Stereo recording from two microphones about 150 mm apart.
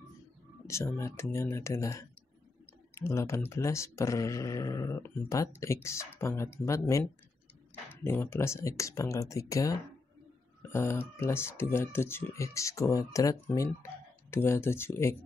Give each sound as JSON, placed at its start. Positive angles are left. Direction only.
{"t": 0.7, "sound": "speech", "side_deg": 20}